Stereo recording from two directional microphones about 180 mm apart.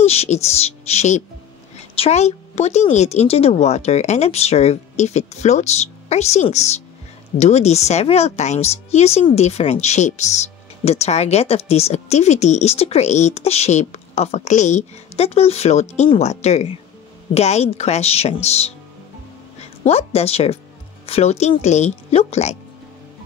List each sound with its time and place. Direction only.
0.0 s speech: 35° left (ahead or behind)
19.8 s speech: 35° left (ahead or behind)